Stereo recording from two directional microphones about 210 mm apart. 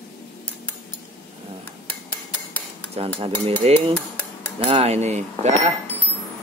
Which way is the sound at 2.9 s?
25° right (ahead or behind).